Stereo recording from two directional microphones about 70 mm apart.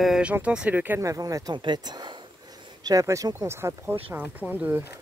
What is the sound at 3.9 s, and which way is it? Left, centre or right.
Speech, right.